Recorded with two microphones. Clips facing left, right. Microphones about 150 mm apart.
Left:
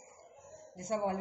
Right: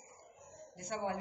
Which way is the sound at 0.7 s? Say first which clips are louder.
Left 5 dB; 40° left (ahead or behind).